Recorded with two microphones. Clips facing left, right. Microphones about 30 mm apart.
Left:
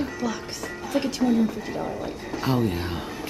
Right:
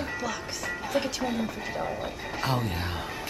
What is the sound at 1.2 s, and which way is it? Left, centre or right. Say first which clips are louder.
Speech: left 8 dB; centre.